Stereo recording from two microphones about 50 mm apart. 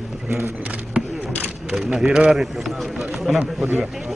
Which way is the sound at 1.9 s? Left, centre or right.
Centre.